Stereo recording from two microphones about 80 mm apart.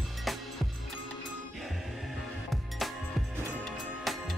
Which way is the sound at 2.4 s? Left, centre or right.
Centre.